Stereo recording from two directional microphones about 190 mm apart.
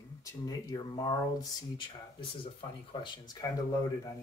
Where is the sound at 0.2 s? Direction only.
20° left (ahead or behind).